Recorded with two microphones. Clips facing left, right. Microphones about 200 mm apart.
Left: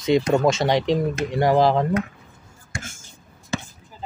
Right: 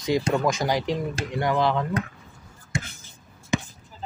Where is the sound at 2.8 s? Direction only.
45° left (ahead or behind).